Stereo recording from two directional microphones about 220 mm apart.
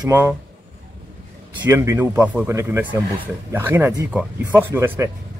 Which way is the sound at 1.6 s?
10° right (ahead or behind).